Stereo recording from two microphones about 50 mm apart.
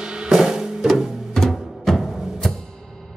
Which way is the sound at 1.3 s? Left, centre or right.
Centre.